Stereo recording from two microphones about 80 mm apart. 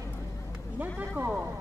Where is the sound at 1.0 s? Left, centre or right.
Right.